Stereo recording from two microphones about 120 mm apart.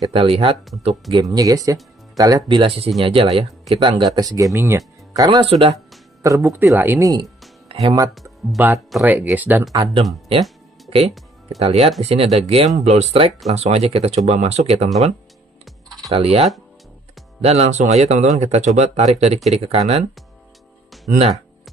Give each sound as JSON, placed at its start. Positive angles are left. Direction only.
{"t": 0.0, "sound": "speech", "side_deg": -55}
{"t": 1.1, "sound": "speech", "side_deg": -35}
{"t": 4.0, "sound": "speech", "side_deg": -35}
{"t": 5.4, "sound": "speech", "side_deg": -50}
{"t": 6.2, "sound": "speech", "side_deg": -25}
{"t": 8.1, "sound": "speech", "side_deg": 0}
{"t": 8.5, "sound": "speech", "side_deg": -20}
{"t": 9.7, "sound": "speech", "side_deg": -40}
{"t": 10.9, "sound": "music", "side_deg": -55}
{"t": 11.6, "sound": "speech", "side_deg": -55}
{"t": 16.1, "sound": "speech", "side_deg": -55}
{"t": 21.1, "sound": "speech", "side_deg": -60}